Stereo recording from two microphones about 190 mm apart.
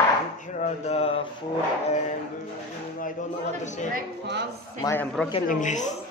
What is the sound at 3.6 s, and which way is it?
Speech, 40° left (ahead or behind).